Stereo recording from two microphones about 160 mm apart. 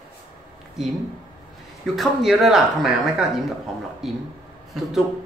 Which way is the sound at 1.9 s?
Centre (ahead or behind).